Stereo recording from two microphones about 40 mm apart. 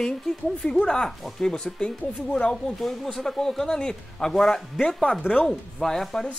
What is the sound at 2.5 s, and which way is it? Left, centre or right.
Speech, centre.